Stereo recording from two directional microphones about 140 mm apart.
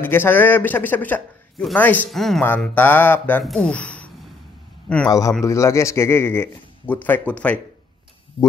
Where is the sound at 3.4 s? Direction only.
5° left (ahead or behind).